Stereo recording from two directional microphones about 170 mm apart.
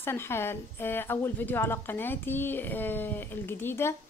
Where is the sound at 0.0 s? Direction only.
15° left (ahead or behind).